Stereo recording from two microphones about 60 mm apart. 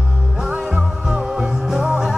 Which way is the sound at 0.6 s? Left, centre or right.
Centre.